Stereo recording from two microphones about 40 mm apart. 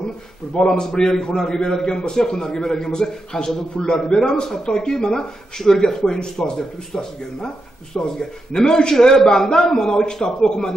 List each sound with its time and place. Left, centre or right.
0.6 s a man's voice: centre